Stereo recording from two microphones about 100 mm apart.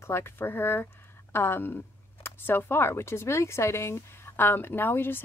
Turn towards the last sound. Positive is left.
turn(degrees=20)  # may be behind; listen again after turning